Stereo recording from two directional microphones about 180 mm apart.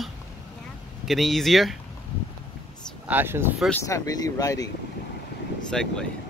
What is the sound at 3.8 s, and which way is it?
Speech, 20° left (ahead or behind).